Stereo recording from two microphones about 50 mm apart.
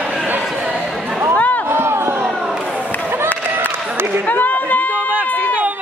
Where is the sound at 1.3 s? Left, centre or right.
Left.